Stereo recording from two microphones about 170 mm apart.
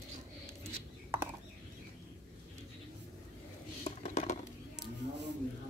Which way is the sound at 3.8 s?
45° left (ahead or behind).